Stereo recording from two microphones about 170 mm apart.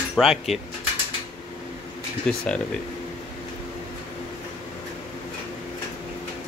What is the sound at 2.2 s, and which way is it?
Speech, 5° left (ahead or behind).